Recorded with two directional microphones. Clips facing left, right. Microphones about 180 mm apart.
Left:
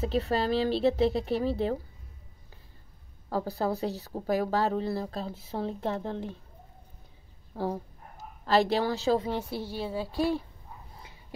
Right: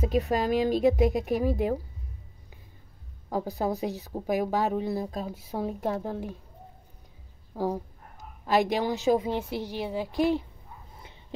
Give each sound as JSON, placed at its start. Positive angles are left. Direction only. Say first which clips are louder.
{"t": 0.0, "sound": "speech", "louder": "right 2 dB", "side_deg": -15}
{"t": 3.3, "sound": "speech", "louder": "right 1 dB", "side_deg": -15}
{"t": 7.5, "sound": "a woman's voice", "louder": "right 3 dB", "side_deg": -15}
{"t": 11.0, "sound": "a sound", "louder": "right 1 dB", "side_deg": -25}